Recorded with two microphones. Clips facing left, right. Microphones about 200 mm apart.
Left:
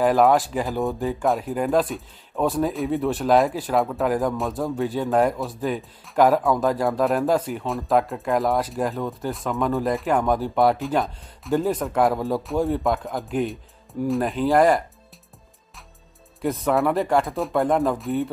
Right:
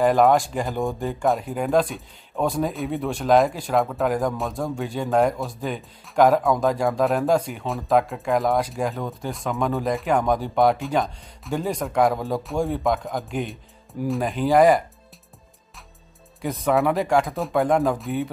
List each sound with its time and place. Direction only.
0.0 s speech: centre (ahead or behind)
16.3 s speech: centre (ahead or behind)